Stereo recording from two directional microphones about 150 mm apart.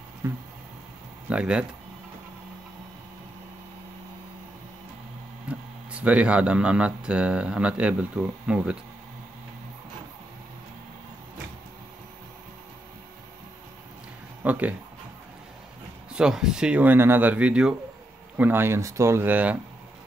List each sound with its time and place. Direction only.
0.2 s a sound: 20° right (ahead or behind)
1.3 s speech: 5° right (ahead or behind)
5.5 s speech: 10° right (ahead or behind)
14.4 s speech: 10° right (ahead or behind)
16.1 s speech: 5° right (ahead or behind)